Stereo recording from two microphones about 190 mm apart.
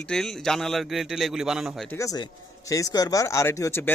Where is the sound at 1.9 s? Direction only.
15° left (ahead or behind).